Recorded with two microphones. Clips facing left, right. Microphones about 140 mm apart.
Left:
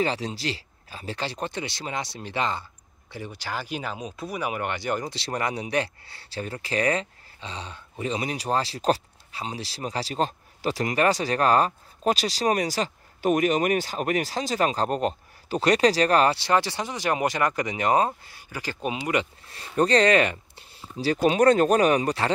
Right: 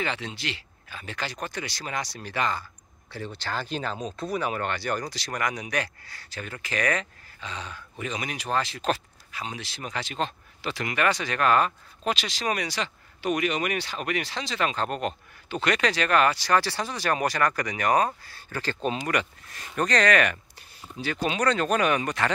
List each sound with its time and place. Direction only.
0.0 s speech: 35° left (ahead or behind); by 18.9 s 10° left (ahead or behind)
18.9 s speech: 25° left (ahead or behind)